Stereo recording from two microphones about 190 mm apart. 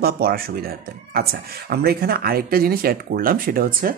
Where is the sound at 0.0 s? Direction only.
55° right (ahead or behind).